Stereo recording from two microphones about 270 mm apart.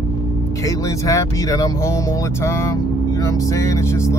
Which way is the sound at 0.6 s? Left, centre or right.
Centre.